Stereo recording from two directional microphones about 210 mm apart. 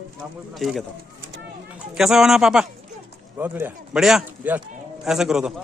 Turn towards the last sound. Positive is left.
turn(degrees=0)  # may be behind; listen again after turning